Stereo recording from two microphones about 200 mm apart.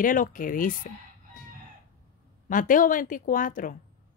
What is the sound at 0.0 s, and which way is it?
Speech, 40° left (ahead or behind).